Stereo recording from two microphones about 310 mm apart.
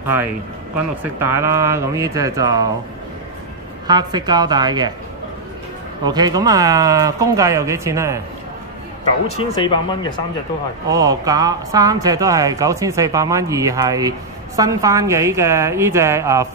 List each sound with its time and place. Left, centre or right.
0.0 s speech: centre
3.8 s speech: centre
6.0 s speech: centre
9.4 s speech: centre
10.9 s speech: centre